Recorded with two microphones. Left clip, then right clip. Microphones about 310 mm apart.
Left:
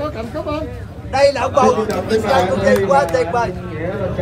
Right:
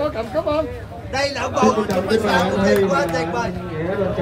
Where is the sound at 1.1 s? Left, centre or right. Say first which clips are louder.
Left 7 dB; centre.